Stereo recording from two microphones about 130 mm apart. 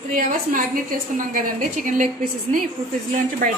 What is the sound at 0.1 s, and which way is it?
A woman's voice, 90° right.